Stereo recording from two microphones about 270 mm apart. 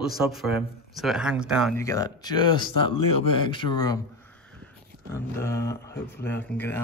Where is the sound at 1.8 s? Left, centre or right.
Centre.